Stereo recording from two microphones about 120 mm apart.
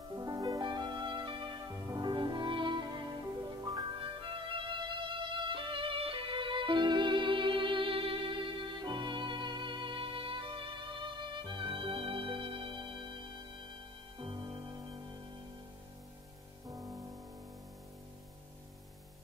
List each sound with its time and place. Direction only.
0.1 s music: 35° right (ahead or behind)
4.0 s music: 50° right (ahead or behind)
14.1 s music: 40° right (ahead or behind)
16.6 s music: 30° right (ahead or behind)